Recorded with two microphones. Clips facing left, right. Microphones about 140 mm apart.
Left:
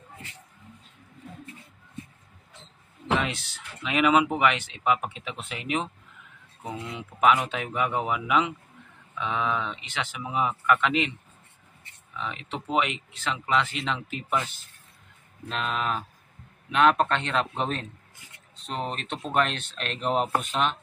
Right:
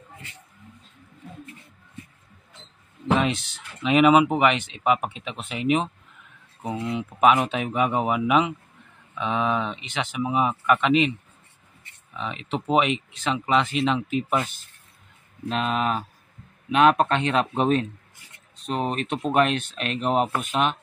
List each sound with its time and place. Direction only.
3.2 s speech: 20° right (ahead or behind)
12.1 s speech: 20° right (ahead or behind)